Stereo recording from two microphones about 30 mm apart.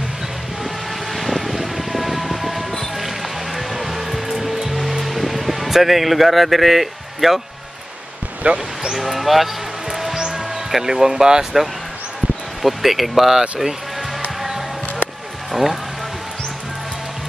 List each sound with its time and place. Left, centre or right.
1.1 s vehicle: centre
3.0 s music: centre
8.4 s speech: right
8.9 s speech: centre
9.8 s music: centre
10.3 s speech: centre
12.6 s speech: centre
15.5 s speech: centre